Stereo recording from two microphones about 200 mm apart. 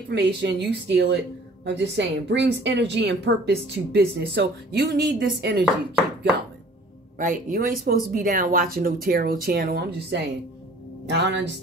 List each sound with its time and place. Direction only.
0.1 s speech: 60° right (ahead or behind)
7.2 s speech: 40° right (ahead or behind); by 11.6 s 60° right (ahead or behind)